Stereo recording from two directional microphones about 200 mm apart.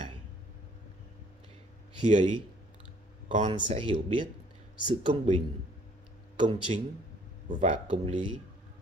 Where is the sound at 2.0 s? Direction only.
35° right (ahead or behind).